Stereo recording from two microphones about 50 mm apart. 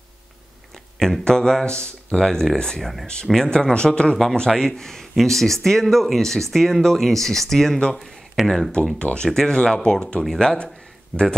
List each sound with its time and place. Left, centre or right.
0.9 s speech: centre
8.9 s speech: left; by 10.6 s centre
11.1 s speech: right